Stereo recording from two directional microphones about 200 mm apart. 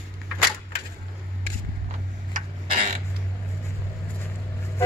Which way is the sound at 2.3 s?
40° right (ahead or behind).